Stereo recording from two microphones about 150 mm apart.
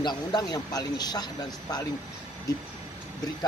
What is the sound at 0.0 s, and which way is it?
Speech, 30° left (ahead or behind).